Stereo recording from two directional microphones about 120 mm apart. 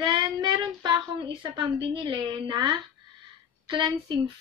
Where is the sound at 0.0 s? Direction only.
40° right (ahead or behind).